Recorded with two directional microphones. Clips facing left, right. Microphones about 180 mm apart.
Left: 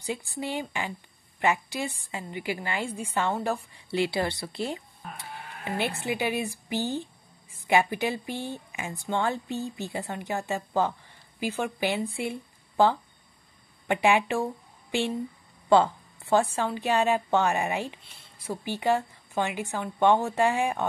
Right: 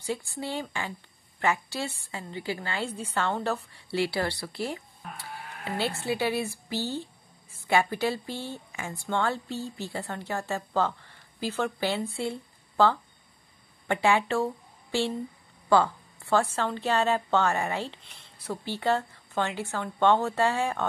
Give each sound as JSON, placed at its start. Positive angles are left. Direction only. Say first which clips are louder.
{"t": 0.0, "sound": "a woman's voice", "louder": "even", "side_deg": 15}